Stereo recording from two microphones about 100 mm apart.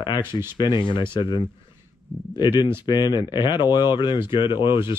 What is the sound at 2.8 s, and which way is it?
Speech, 45° left (ahead or behind).